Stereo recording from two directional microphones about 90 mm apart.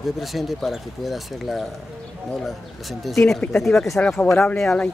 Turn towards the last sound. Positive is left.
turn(degrees=10)  # may be behind; listen again after turning